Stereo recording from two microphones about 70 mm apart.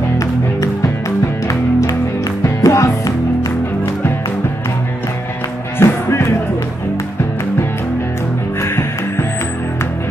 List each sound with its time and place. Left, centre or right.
1.5 s music: left
5.8 s music: left
8.5 s music: left